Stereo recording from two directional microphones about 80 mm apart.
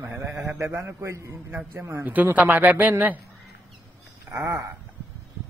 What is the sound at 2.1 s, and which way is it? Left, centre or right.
Speech, right.